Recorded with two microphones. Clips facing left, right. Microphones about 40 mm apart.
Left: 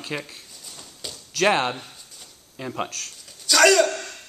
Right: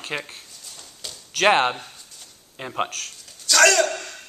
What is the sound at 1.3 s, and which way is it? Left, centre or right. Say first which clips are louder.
Speech: right 3 dB; right.